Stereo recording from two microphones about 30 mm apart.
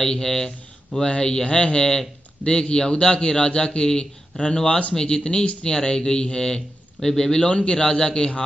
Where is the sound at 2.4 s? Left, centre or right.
Centre.